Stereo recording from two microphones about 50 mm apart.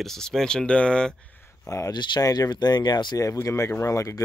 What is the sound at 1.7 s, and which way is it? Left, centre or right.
Speech, left.